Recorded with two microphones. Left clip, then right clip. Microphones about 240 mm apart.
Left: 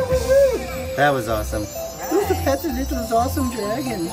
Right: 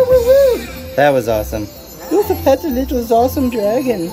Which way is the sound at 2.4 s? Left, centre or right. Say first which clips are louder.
Right 8 dB; centre.